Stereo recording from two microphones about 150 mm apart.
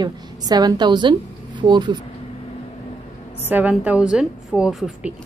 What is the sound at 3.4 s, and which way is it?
A woman's voice, 10° right (ahead or behind).